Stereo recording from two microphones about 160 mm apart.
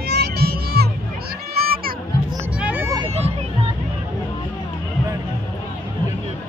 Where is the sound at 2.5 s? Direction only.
10° right (ahead or behind).